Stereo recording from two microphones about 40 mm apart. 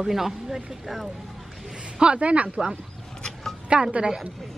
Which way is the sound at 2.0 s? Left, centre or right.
Right.